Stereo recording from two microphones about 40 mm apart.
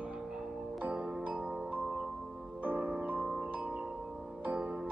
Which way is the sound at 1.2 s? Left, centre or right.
Right.